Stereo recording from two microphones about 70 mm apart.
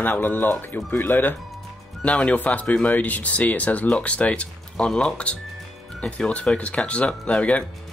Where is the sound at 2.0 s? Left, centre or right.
Centre.